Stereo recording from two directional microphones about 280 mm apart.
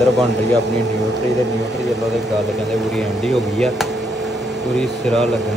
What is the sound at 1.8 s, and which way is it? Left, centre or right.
Speech, centre.